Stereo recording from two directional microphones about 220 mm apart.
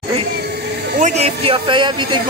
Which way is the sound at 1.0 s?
30° right (ahead or behind).